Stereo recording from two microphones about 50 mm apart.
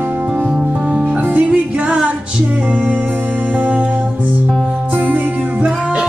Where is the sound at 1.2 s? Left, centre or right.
Right.